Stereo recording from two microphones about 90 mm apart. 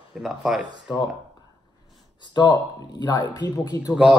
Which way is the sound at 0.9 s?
50° left (ahead or behind).